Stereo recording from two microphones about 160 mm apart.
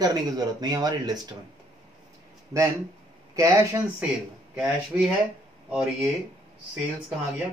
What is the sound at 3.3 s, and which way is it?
Speech, 20° right (ahead or behind).